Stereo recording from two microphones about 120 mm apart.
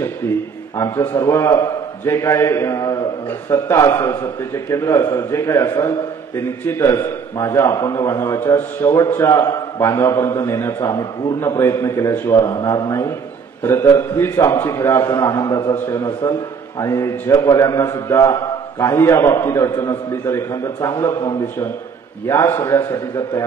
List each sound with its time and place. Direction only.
0.7 s a man's voice: 25° left (ahead or behind)
13.6 s a man's voice: 20° left (ahead or behind)